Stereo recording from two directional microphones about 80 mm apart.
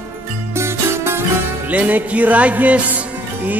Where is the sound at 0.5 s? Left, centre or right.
Right.